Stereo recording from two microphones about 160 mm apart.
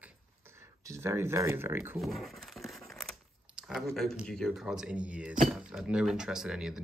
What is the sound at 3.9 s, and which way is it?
Speech, centre (ahead or behind).